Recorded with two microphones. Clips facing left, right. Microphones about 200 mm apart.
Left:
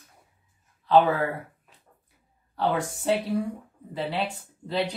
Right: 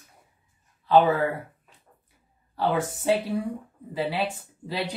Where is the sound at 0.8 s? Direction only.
Centre (ahead or behind).